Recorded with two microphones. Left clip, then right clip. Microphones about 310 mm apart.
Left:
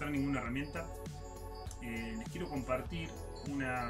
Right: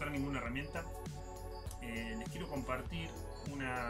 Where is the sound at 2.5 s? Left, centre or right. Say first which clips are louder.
Left 4 dB; centre.